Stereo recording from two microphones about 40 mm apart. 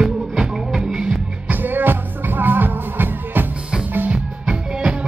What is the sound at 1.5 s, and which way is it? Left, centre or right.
Music, right.